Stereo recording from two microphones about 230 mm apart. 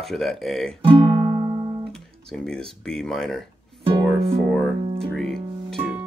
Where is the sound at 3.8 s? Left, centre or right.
Right.